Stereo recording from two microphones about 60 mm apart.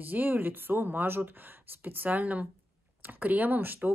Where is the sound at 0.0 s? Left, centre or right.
Right.